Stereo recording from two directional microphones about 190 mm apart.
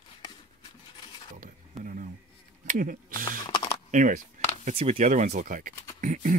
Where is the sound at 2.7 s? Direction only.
45° right (ahead or behind).